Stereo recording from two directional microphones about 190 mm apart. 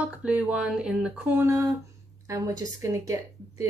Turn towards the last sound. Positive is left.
turn(degrees=-15)  # may be behind; listen again after turning